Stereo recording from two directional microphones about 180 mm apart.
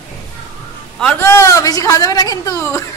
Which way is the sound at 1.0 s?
10° left (ahead or behind).